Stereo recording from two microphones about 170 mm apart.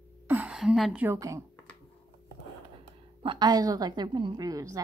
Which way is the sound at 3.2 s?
25° right (ahead or behind).